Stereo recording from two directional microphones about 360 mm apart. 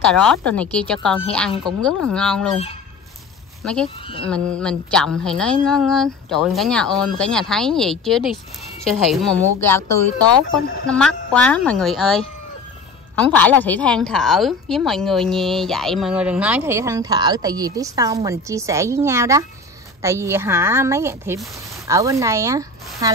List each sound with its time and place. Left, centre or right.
0.0 s speech: centre
3.6 s speech: centre
10.9 s speech: centre